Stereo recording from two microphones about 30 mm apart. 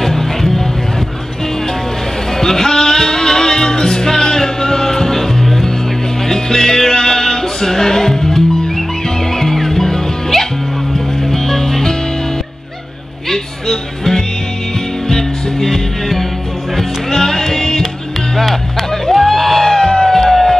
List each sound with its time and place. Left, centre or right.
0.0 s music: centre
2.3 s music: centre
13.3 s music: centre
18.3 s music: centre; by 20.1 s left
20.1 s music: centre